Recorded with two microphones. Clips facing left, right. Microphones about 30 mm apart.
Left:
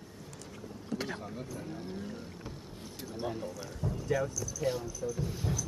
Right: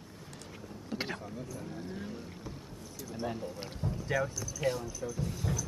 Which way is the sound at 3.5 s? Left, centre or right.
Right.